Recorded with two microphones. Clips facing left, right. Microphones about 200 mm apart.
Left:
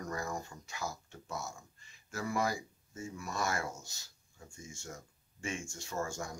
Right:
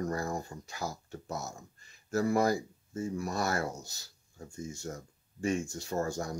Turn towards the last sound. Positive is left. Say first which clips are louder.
# right 6 dB
turn(degrees=-35)  # may be behind; listen again after turning